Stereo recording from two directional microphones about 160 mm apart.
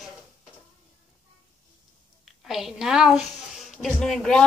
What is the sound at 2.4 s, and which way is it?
A woman's voice, centre (ahead or behind).